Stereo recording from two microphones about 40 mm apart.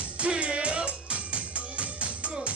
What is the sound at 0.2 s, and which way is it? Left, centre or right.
Music, right.